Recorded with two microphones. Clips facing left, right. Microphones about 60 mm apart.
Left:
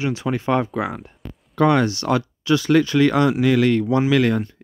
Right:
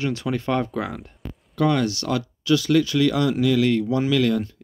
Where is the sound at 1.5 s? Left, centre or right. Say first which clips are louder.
Left 4 dB; left.